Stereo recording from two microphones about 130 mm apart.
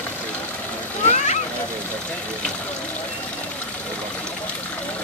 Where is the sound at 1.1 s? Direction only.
65° left (ahead or behind).